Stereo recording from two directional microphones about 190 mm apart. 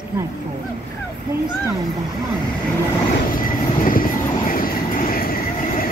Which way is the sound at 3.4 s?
45° left (ahead or behind).